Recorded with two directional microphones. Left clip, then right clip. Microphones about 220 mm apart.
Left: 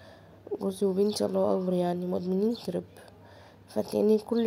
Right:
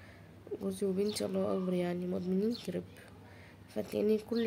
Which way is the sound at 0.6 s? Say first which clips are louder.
Left 7 dB; 20° left (ahead or behind).